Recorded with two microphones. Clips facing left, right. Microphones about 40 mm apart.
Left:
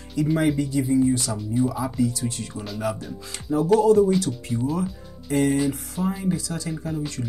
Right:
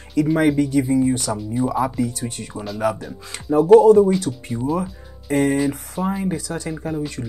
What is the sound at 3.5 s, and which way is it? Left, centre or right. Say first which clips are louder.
Speech: right 7 dB; right.